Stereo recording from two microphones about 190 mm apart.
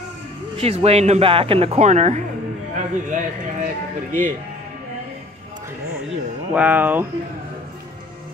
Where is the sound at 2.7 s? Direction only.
40° right (ahead or behind).